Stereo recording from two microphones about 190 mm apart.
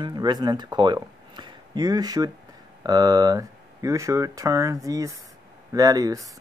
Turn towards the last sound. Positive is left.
turn(degrees=-20)  # may be behind; listen again after turning